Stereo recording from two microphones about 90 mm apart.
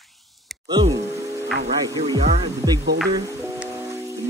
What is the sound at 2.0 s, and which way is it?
Speech, 60° right (ahead or behind).